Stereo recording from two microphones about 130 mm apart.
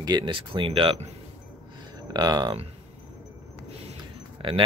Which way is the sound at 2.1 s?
30° right (ahead or behind).